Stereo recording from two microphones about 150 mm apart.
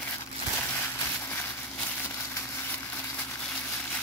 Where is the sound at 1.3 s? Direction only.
15° left (ahead or behind).